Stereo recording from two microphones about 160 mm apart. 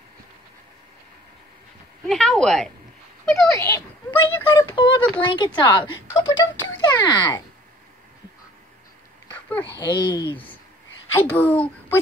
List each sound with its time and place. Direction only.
2.0 s speech: centre (ahead or behind)
3.4 s speech: 20° left (ahead or behind)
4.5 s speech: 30° left (ahead or behind)
9.3 s a sound: 10° left (ahead or behind)
9.8 s speech: 30° left (ahead or behind)
11.1 s speech: 10° left (ahead or behind)